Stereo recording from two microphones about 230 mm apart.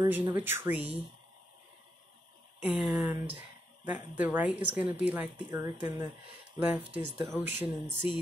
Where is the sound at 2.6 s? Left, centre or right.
Centre.